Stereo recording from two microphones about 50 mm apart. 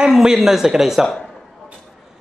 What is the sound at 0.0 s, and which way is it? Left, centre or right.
Speech, centre.